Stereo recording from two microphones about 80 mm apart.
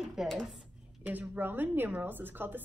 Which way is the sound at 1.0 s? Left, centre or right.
Centre.